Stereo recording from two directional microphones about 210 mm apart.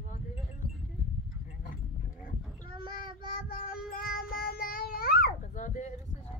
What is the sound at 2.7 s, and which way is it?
Child singing, 45° left (ahead or behind).